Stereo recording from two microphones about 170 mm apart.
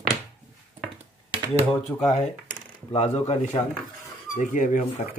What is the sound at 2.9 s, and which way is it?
Speech, 35° left (ahead or behind).